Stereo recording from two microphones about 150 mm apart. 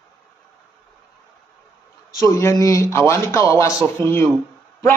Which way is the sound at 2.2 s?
20° left (ahead or behind).